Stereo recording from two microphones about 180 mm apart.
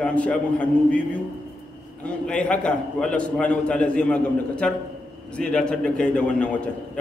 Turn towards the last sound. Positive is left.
turn(degrees=5)  # may be behind; listen again after turning